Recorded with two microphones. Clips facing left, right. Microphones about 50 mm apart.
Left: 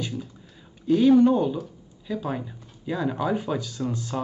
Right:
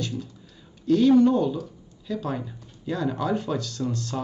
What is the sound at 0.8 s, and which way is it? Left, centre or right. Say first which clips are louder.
Speech: even; centre.